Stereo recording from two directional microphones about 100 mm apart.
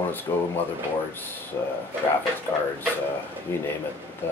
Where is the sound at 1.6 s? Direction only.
25° left (ahead or behind).